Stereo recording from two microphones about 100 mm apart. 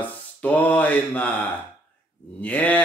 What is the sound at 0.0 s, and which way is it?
Speech, 15° left (ahead or behind).